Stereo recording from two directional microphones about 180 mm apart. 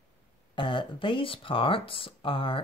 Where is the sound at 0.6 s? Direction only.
25° left (ahead or behind).